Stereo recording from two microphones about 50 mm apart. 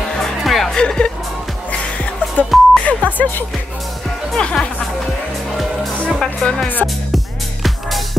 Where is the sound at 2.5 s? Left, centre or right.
Centre.